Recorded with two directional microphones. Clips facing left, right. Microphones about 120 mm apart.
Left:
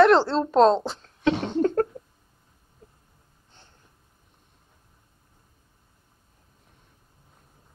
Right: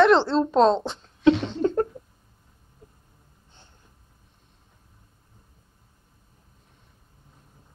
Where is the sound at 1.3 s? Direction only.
50° left (ahead or behind).